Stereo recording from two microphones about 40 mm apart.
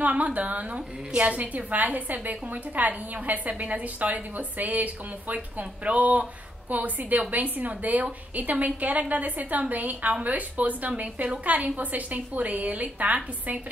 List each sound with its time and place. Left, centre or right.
0.0 s a woman's voice: right